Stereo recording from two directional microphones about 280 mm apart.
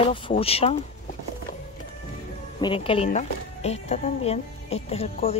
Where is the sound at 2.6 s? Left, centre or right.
Centre.